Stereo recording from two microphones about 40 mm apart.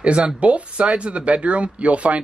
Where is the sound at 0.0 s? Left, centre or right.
Right.